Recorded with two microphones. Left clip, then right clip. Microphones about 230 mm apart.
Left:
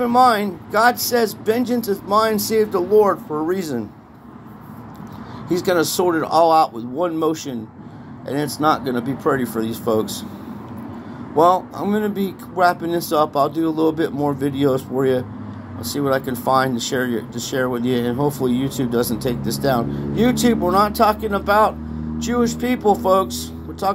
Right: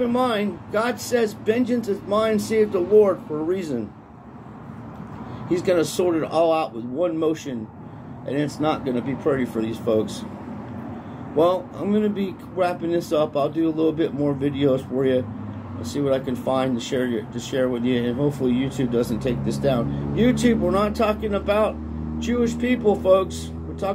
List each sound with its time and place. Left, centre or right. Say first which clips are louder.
0.0 s speech: left 7 dB; left
5.5 s speech: left 2 dB; left
11.3 s speech: left 5 dB; left